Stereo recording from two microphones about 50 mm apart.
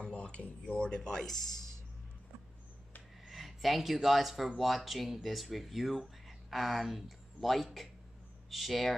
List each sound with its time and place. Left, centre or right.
0.0 s speech: left
3.3 s speech: centre